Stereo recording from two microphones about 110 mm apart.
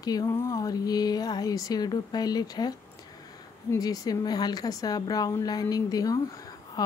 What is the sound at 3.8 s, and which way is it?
Speech, 35° left (ahead or behind).